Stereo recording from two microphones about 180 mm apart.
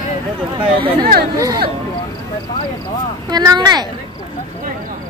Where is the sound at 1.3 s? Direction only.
20° right (ahead or behind).